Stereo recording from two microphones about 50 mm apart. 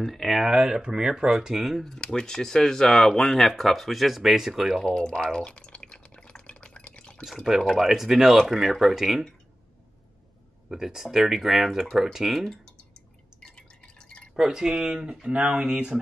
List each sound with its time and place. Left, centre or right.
0.0 s speech: centre
1.9 s speech: centre
4.9 s drip: centre
7.6 s speech: centre
10.7 s speech: centre
13.4 s drip: centre
14.3 s speech: centre